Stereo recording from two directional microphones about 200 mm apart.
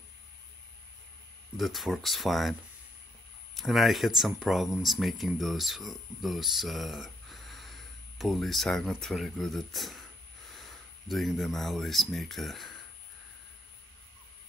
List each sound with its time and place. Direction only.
1.6 s speech: centre (ahead or behind)
3.5 s speech: centre (ahead or behind)